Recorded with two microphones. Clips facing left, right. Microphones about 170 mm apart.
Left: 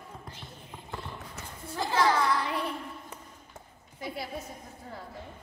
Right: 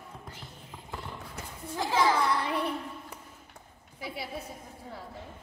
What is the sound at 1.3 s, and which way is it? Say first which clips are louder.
Horse: right 3 dB; 10° right (ahead or behind).